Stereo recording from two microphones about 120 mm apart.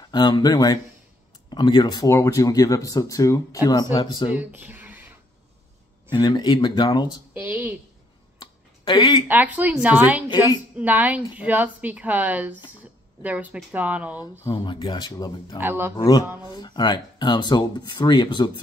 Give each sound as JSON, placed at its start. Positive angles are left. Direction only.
{"t": 0.1, "sound": "speech", "side_deg": 35}
{"t": 4.4, "sound": "speech", "side_deg": -15}
{"t": 6.0, "sound": "speech", "side_deg": 40}
{"t": 7.3, "sound": "a woman's voice", "side_deg": -15}
{"t": 8.4, "sound": "a sound", "side_deg": 40}
{"t": 9.3, "sound": "a woman's voice", "side_deg": -15}
{"t": 14.5, "sound": "speech", "side_deg": 40}
{"t": 15.6, "sound": "a woman's voice", "side_deg": -20}
{"t": 16.5, "sound": "speech", "side_deg": 35}